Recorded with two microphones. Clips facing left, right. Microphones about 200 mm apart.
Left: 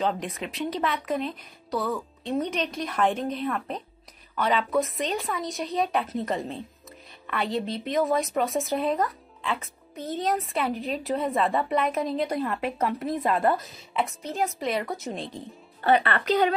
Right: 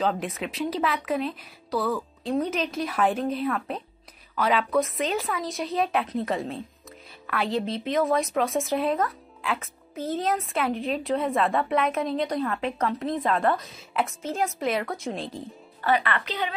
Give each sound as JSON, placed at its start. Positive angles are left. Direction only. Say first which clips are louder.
{"t": 0.0, "sound": "a woman's voice", "louder": "right 1 dB", "side_deg": 0}
{"t": 15.8, "sound": "speech", "louder": "left 2 dB", "side_deg": 30}